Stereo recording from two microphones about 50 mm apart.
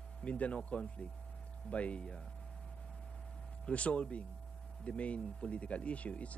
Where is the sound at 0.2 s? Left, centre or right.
Left.